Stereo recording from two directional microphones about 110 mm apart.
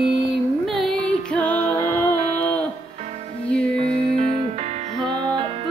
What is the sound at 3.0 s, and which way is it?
Music, 75° right (ahead or behind).